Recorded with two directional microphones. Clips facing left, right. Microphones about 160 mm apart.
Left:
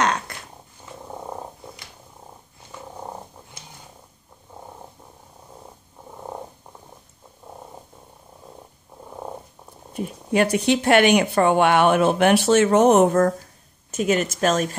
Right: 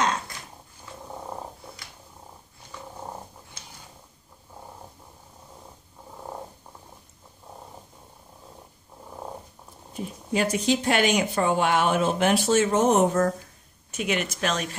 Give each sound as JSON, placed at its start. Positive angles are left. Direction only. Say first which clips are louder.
{"t": 0.3, "sound": "dog", "louder": "left 3 dB", "side_deg": 65}
{"t": 9.9, "sound": "speech", "louder": "left 6 dB", "side_deg": 65}
{"t": 13.9, "sound": "speech", "louder": "left 6 dB", "side_deg": 45}